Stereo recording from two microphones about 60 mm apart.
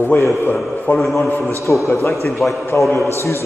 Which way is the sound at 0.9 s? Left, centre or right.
Centre.